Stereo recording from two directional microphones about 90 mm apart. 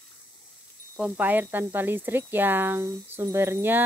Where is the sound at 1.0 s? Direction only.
20° right (ahead or behind).